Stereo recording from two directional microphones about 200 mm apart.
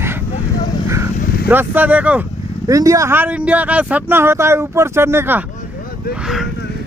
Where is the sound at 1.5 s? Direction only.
10° right (ahead or behind).